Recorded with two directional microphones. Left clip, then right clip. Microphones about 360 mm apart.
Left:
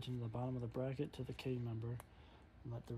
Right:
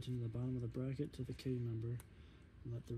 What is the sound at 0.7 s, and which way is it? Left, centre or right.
Speech, centre.